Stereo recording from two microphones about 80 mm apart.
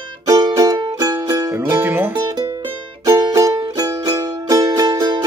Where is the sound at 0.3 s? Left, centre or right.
Right.